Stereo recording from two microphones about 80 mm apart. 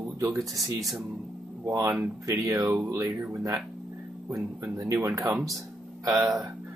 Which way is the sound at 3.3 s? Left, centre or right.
Right.